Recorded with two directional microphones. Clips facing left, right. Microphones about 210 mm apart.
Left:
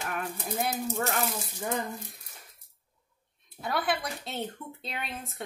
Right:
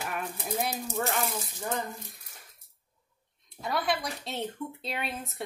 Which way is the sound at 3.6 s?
Centre (ahead or behind).